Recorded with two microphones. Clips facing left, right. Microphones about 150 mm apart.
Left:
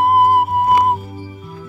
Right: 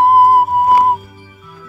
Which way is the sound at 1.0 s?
35° left (ahead or behind).